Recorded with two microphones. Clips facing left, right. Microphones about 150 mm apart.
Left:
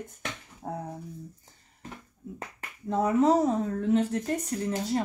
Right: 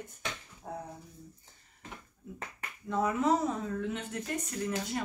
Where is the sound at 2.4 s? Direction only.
35° left (ahead or behind).